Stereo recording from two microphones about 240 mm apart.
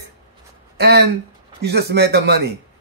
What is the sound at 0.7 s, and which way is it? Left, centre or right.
Speech, right.